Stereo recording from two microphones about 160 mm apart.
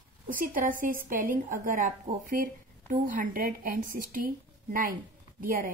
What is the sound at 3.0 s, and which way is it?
A woman's voice, 60° right (ahead or behind).